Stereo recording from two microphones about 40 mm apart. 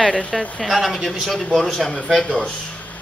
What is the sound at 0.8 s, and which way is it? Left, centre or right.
A man's voice, centre.